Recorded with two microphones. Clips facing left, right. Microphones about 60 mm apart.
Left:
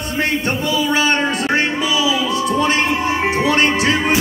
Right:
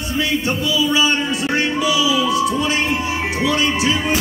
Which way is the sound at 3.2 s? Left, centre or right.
Left.